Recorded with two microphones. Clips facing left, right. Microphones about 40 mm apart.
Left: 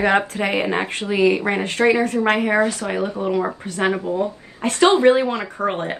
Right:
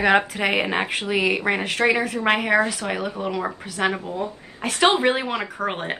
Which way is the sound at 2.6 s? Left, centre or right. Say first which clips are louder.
Left 3 dB; right.